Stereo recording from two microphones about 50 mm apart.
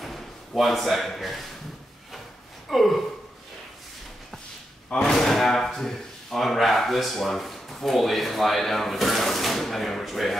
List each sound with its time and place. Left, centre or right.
0.0 s speech: centre
2.7 s speech: centre
4.8 s speech: centre
5.1 s speech: centre